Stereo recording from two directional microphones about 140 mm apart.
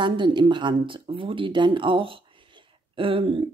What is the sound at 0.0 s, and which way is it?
Speech, 35° right (ahead or behind).